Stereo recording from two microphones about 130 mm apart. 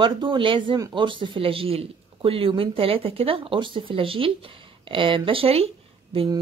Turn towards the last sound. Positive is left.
turn(degrees=-45)  # may be behind; listen again after turning